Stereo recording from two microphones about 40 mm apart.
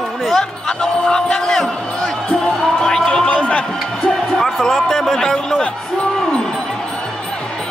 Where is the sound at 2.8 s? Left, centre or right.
Centre.